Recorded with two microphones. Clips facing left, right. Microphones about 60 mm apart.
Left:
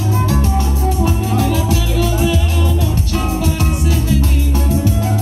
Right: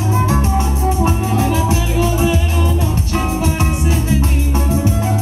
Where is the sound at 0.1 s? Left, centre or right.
Right.